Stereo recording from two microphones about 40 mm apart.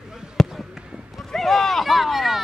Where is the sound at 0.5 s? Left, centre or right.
Centre.